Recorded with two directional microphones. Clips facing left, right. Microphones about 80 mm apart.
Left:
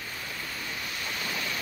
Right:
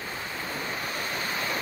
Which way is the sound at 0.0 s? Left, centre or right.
Right.